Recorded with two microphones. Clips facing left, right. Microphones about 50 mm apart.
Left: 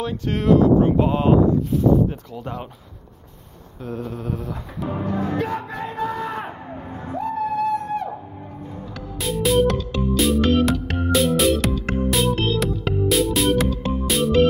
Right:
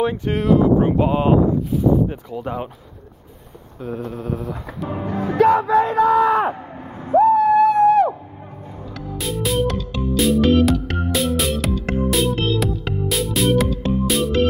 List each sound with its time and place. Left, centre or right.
0.0 s speech: right
0.3 s a sound: centre
1.7 s speech: centre
3.8 s a sound: centre
5.0 s speech: centre
5.4 s a sound: right
7.1 s owl: right
7.7 s music: right
9.2 s music: centre